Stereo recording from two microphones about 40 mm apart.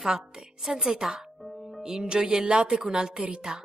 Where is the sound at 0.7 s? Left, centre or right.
Centre.